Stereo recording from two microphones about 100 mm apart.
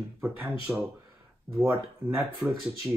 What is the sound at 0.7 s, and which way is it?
Speech, 10° right (ahead or behind).